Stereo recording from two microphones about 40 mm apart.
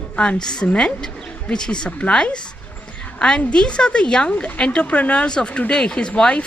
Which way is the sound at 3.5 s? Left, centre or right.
Left.